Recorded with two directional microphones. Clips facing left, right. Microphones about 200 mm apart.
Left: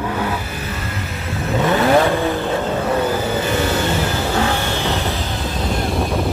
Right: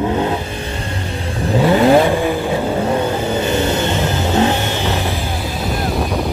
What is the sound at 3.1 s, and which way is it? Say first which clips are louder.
Vehicle: right 2 dB; 25° right (ahead or behind).